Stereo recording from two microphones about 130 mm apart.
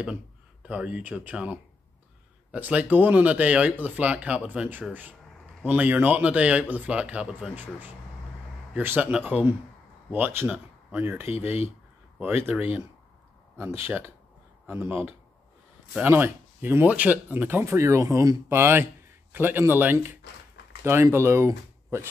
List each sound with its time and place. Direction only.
0.0 s speech: 10° right (ahead or behind)